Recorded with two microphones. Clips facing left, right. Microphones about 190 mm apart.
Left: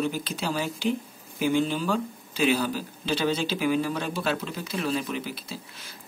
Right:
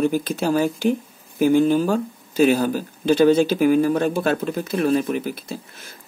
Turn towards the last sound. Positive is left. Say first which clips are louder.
# right 6 dB
turn(degrees=-50)  # may be behind; listen again after turning